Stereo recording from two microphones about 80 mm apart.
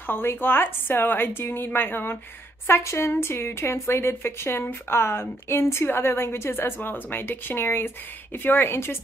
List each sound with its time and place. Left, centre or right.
0.0 s a woman's voice: left